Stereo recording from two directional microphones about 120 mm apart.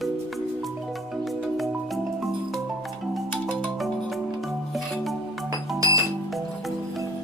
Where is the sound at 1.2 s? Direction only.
Centre (ahead or behind).